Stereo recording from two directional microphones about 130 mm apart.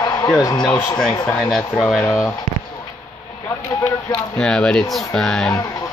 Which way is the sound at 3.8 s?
5° left (ahead or behind).